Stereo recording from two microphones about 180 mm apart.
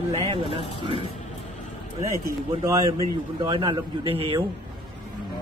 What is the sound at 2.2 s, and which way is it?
A man's voice, 15° right (ahead or behind).